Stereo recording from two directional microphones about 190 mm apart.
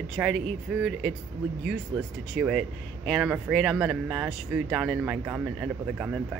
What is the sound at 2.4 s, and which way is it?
A man's voice, 5° right (ahead or behind).